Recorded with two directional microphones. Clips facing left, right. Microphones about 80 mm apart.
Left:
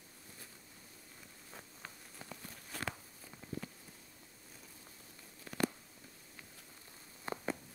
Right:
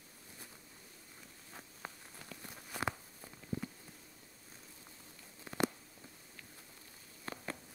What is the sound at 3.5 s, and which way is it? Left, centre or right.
Insect, right.